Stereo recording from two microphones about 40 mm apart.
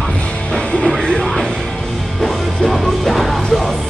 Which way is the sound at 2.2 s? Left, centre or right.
Centre.